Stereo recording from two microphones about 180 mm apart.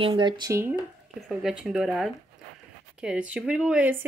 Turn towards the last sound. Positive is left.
turn(degrees=-10)  # may be behind; listen again after turning